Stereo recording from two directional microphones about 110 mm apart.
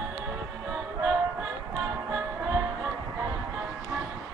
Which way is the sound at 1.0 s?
20° right (ahead or behind).